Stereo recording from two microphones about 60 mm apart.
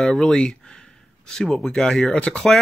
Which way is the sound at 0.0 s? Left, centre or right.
Centre.